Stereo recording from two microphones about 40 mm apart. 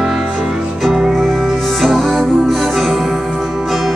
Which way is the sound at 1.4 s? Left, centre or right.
Centre.